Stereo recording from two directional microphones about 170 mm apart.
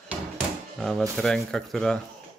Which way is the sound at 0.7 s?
Centre (ahead or behind).